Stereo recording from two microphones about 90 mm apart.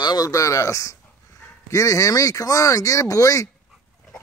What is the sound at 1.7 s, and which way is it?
Speech, 35° left (ahead or behind).